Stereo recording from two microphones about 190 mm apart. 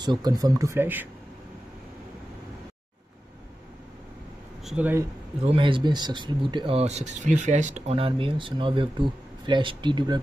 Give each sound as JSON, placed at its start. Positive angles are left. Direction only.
{"t": 0.0, "sound": "speech", "side_deg": -20}
{"t": 4.6, "sound": "speech", "side_deg": -10}
{"t": 5.4, "sound": "speech", "side_deg": -30}